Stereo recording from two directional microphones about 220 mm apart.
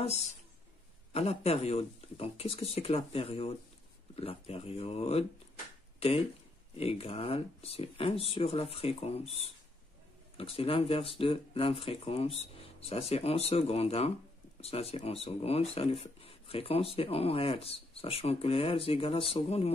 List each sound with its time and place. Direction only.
0.0 s speech: 30° left (ahead or behind)